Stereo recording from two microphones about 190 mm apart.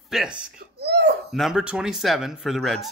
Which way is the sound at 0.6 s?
60° right (ahead or behind).